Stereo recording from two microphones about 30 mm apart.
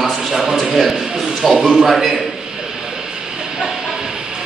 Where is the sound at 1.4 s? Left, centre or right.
Centre.